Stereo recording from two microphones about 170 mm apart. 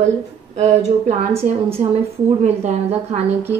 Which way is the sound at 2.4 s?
40° right (ahead or behind).